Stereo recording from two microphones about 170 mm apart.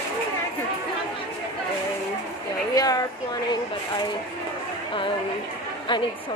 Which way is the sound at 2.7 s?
20° left (ahead or behind).